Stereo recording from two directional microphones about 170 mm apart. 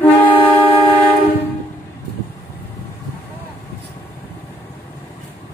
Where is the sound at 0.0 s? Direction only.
10° left (ahead or behind).